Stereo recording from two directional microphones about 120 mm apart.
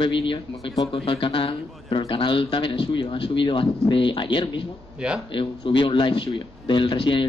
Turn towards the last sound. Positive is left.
turn(degrees=45)  # may be behind; listen again after turning